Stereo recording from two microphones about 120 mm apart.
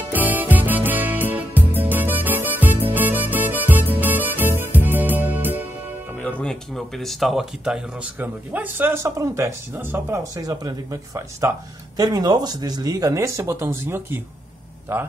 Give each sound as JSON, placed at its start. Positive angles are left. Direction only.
{"t": 0.1, "sound": "music", "side_deg": -15}
{"t": 6.1, "sound": "speech", "side_deg": 10}
{"t": 10.2, "sound": "speech", "side_deg": -30}